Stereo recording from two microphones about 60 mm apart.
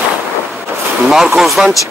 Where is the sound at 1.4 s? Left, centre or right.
Centre.